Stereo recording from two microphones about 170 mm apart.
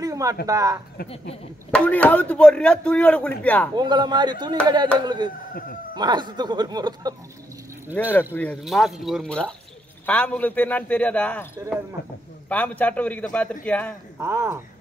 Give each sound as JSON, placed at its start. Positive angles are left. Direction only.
{"t": 0.0, "sound": "a sound", "side_deg": -20}
{"t": 0.5, "sound": "speech", "side_deg": -20}
{"t": 1.7, "sound": "speech", "side_deg": 10}
{"t": 3.7, "sound": "speech", "side_deg": -25}
{"t": 8.0, "sound": "speech", "side_deg": 10}
{"t": 8.6, "sound": "speech", "side_deg": 0}
{"t": 12.4, "sound": "speech", "side_deg": 10}
{"t": 14.2, "sound": "speech", "side_deg": -15}